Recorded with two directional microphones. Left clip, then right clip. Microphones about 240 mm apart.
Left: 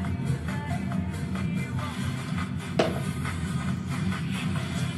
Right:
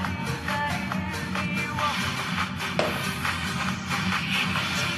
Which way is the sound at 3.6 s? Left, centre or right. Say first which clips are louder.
Right 7 dB; right.